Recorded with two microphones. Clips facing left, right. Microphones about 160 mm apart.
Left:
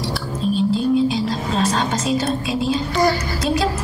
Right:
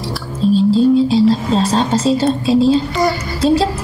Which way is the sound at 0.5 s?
30° right (ahead or behind).